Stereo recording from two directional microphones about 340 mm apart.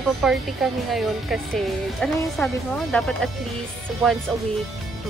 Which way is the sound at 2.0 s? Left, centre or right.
Centre.